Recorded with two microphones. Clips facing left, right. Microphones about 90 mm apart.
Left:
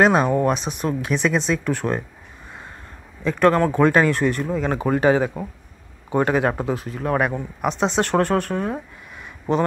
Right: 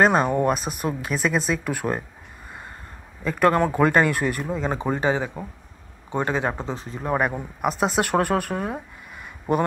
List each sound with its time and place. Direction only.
0.0 s speech: centre (ahead or behind)
3.3 s speech: 10° right (ahead or behind)
4.9 s speech: 20° right (ahead or behind)
5.2 s speech: 15° left (ahead or behind)
7.0 s speech: 5° right (ahead or behind)